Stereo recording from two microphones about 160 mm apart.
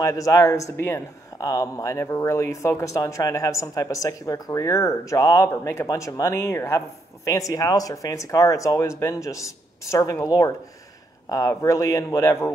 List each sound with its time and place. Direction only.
0.0 s speech: 20° left (ahead or behind)